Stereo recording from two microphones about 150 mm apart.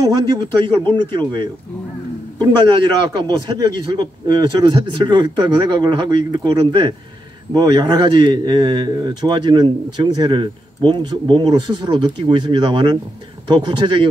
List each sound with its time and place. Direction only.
0.8 s a man's voice: 15° left (ahead or behind)
1.1 s a man's voice: 30° right (ahead or behind)
2.5 s a man's voice: 35° right (ahead or behind)